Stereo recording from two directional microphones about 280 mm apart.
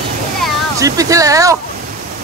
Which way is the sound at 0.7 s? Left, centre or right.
Centre.